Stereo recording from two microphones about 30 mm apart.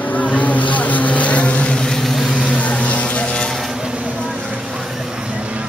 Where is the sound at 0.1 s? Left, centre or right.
Left.